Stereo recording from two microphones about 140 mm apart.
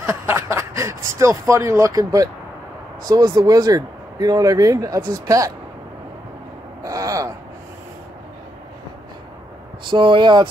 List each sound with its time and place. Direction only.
0.0 s speech: 20° right (ahead or behind)
6.8 s a sound: 25° right (ahead or behind)
9.8 s speech: 35° right (ahead or behind)